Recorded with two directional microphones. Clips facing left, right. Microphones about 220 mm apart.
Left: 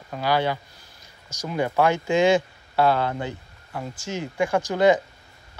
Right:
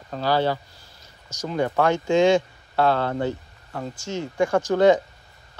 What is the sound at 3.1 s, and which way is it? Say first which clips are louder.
Speech: right 5 dB; 40° right (ahead or behind).